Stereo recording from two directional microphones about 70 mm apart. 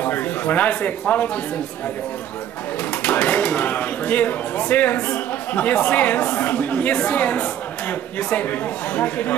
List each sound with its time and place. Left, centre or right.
0.0 s speech: left
2.9 s speech: centre